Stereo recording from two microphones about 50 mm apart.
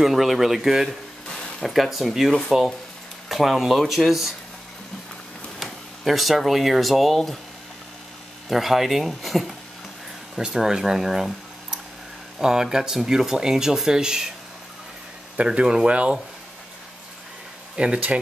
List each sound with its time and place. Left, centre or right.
0.0 s speech: centre
5.6 s speech: centre
8.5 s speech: centre
15.3 s speech: right
17.7 s speech: centre